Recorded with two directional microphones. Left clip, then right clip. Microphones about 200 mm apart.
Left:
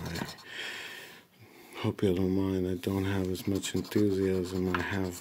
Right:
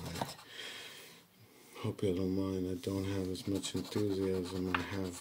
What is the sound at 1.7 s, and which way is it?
Speech, 35° left (ahead or behind).